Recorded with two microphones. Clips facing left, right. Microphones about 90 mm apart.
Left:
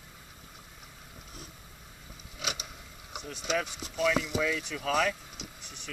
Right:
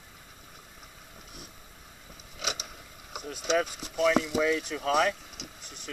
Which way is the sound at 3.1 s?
5° right (ahead or behind).